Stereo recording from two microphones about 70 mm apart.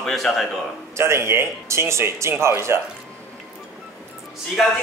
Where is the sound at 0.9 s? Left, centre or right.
Right.